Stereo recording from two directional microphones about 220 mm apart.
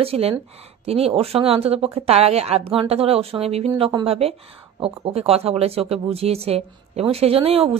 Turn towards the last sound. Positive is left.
turn(degrees=-25)  # may be behind; listen again after turning